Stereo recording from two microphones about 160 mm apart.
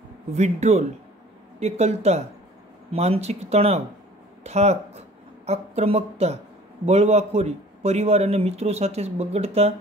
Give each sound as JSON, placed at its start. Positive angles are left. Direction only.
{"t": 0.4, "sound": "a man's voice", "side_deg": -45}